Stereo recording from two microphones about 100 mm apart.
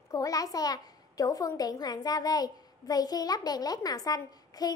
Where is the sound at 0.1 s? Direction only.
35° left (ahead or behind).